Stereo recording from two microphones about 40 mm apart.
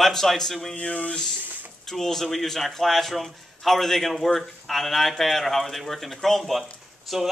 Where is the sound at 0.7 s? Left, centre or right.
Left.